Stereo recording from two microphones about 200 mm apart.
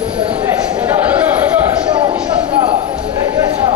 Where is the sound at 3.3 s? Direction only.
20° right (ahead or behind).